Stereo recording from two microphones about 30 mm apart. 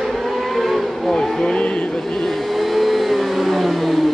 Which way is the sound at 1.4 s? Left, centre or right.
Left.